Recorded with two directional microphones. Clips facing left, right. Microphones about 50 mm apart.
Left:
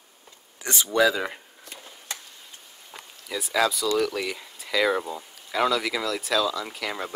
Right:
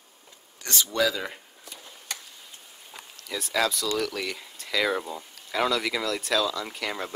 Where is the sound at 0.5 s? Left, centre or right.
Left.